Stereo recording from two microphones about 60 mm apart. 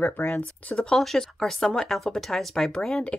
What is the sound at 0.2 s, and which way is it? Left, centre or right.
Speech, left.